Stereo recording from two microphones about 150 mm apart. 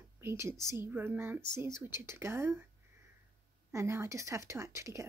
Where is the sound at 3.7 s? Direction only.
20° right (ahead or behind).